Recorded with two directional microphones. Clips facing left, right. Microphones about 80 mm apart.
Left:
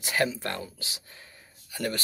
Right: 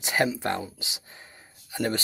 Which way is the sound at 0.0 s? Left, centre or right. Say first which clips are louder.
Right 2 dB; centre.